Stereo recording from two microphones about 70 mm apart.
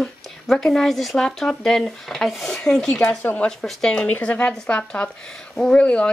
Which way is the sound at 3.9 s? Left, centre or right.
Left.